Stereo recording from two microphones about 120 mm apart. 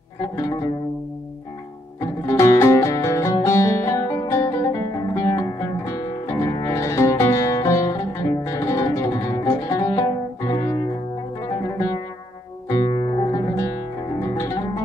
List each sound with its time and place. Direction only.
2.0 s music: 25° left (ahead or behind)